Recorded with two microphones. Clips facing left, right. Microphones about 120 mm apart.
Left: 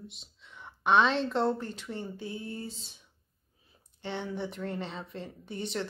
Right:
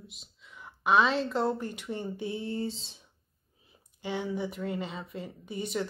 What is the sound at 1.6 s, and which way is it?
Speech, 15° right (ahead or behind).